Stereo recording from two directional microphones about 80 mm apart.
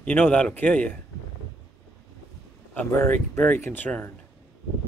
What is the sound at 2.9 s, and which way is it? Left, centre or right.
Speech, left.